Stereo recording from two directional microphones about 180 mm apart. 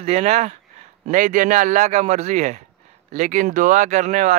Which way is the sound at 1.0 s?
45° right (ahead or behind).